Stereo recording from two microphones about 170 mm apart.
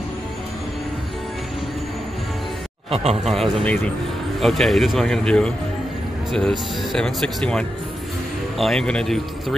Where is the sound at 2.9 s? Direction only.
35° right (ahead or behind).